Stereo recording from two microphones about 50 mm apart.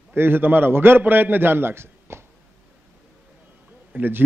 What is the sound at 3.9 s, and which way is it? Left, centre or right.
Speech, right.